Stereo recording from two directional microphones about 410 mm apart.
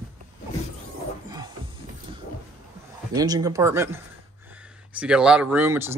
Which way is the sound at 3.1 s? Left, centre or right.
Centre.